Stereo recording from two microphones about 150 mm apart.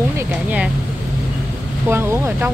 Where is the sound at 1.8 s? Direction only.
15° right (ahead or behind).